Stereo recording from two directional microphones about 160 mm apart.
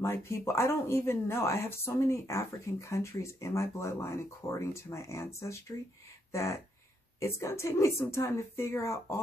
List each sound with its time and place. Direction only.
0.0 s speech: 15° left (ahead or behind)